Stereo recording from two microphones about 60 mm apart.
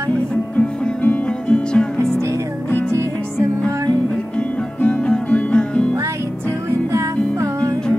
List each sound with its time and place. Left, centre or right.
0.6 s music: centre
4.4 s music: centre